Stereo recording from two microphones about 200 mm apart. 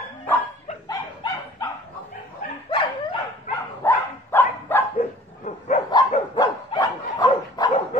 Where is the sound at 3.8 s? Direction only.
10° left (ahead or behind).